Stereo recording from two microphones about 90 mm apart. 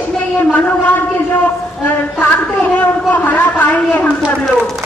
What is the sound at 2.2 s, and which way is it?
A man's voice, 15° left (ahead or behind).